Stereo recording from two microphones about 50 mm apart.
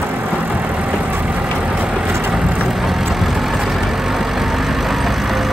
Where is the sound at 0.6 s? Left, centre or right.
Right.